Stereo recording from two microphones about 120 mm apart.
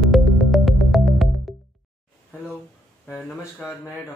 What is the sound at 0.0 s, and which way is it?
Music, centre (ahead or behind).